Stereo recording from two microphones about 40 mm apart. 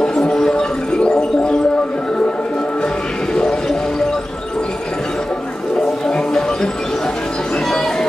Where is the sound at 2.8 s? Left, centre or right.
Centre.